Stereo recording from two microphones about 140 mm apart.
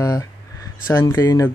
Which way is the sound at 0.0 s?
25° left (ahead or behind).